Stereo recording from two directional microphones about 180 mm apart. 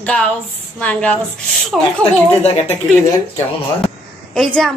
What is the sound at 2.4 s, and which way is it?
Speech, 35° left (ahead or behind).